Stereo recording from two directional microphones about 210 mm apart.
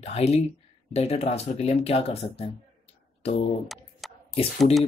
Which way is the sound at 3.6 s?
Centre (ahead or behind).